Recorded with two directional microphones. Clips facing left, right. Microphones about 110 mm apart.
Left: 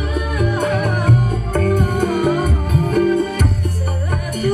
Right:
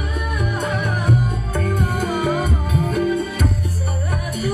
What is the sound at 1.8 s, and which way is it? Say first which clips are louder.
Music: left 4 dB; 60° left (ahead or behind).